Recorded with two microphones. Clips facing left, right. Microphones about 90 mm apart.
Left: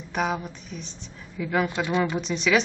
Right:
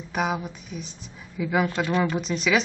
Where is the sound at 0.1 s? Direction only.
5° right (ahead or behind).